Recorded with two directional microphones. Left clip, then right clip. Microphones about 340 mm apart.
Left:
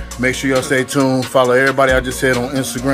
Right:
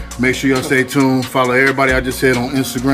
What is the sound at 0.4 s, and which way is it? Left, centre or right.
Speech, centre.